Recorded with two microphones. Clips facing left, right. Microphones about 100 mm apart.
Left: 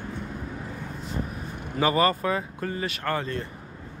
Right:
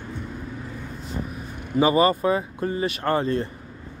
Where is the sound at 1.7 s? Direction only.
20° right (ahead or behind).